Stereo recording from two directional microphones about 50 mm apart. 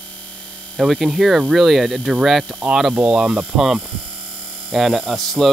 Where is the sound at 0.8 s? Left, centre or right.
Centre.